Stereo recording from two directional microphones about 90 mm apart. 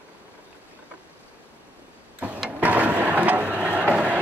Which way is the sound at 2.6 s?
15° right (ahead or behind).